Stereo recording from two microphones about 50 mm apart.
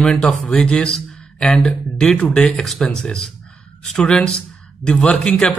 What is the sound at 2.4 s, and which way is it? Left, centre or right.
Speech, centre.